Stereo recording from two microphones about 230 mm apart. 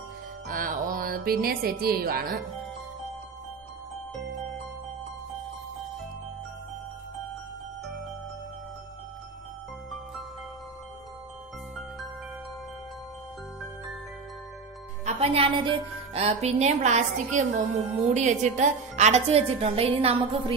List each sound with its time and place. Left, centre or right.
0.5 s music: right
15.0 s music: right
18.1 s a woman's voice: right